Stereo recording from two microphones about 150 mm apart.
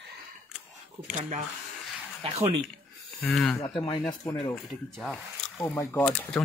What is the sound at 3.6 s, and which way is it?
Speech, 30° left (ahead or behind).